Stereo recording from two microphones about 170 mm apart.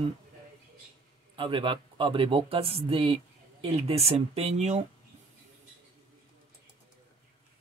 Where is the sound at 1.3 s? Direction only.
30° right (ahead or behind).